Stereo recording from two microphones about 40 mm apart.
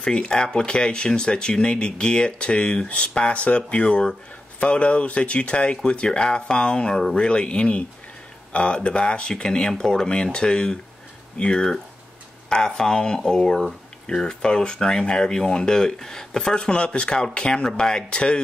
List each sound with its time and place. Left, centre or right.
0.0 s speech: left
16.5 s speech: left